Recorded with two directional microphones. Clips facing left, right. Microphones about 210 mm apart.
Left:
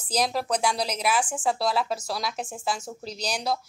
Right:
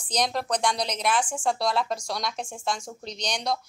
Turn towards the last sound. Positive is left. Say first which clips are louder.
# left 1 dB
turn(degrees=5)  # may be behind; listen again after turning